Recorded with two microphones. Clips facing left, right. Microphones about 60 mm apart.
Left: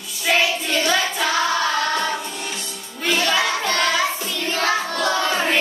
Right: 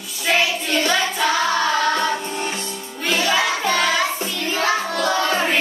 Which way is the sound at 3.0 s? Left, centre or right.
Centre.